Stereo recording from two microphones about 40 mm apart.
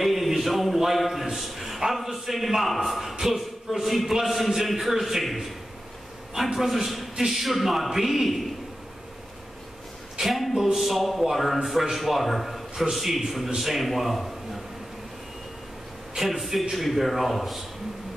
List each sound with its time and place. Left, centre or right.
0.0 s a sound: centre
0.7 s a man's voice: centre
10.2 s a man's voice: centre
16.2 s a man's voice: centre